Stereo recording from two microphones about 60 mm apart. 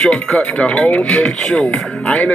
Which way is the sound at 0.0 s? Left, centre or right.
Centre.